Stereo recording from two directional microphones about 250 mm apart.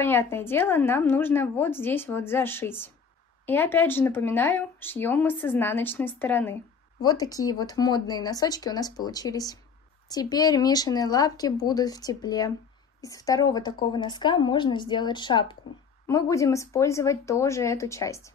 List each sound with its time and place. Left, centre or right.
0.0 s speech: centre